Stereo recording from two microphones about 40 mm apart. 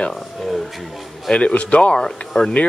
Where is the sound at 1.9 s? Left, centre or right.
Centre.